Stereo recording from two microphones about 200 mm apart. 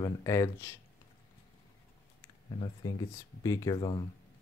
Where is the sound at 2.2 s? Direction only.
20° left (ahead or behind).